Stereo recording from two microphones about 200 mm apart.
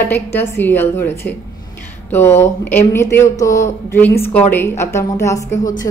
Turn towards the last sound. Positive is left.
turn(degrees=15)  # may be behind; listen again after turning